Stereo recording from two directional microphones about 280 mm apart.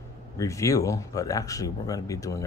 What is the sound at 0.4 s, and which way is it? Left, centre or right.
Speech, centre.